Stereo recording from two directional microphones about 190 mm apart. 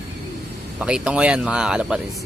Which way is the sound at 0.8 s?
5° right (ahead or behind).